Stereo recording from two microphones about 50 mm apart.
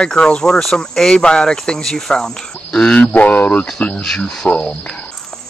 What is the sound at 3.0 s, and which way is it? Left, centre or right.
Speech, left.